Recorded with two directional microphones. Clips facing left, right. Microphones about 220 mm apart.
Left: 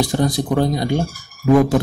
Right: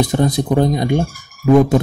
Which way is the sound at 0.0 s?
20° right (ahead or behind).